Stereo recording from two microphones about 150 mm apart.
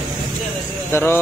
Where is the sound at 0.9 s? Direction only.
15° left (ahead or behind).